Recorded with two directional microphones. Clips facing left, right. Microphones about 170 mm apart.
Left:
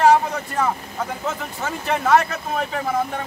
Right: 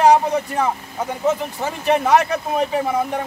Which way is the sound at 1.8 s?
20° right (ahead or behind).